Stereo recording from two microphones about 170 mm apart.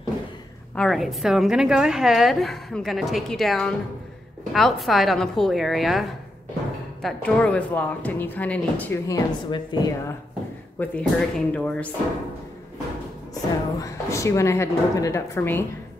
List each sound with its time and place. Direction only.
0.7 s a woman's voice: centre (ahead or behind); by 10.1 s 25° left (ahead or behind)
10.8 s speech: 10° left (ahead or behind)
13.3 s a woman's voice: 20° left (ahead or behind)